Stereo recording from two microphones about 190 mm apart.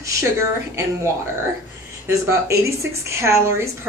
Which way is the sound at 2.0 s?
15° right (ahead or behind).